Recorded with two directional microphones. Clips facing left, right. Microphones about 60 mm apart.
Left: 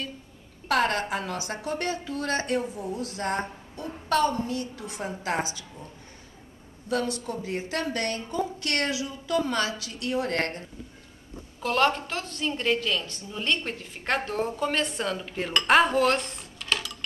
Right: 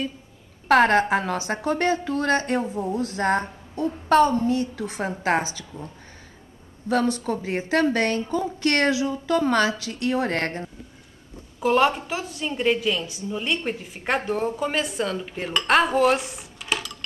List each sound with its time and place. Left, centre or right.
0.7 s speech: right
6.9 s speech: right
11.6 s a woman's voice: centre